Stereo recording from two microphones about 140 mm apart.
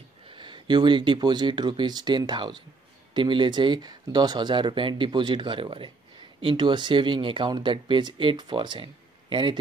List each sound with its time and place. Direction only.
0.3 s speech: 35° right (ahead or behind)